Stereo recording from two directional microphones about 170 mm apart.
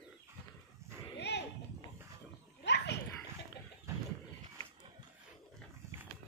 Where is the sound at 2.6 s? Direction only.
85° left.